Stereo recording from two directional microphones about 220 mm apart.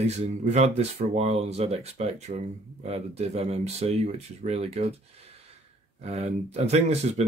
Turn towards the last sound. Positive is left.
turn(degrees=-30)  # may be behind; listen again after turning